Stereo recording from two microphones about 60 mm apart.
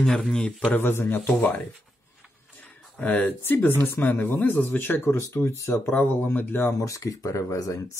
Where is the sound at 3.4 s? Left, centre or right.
Left.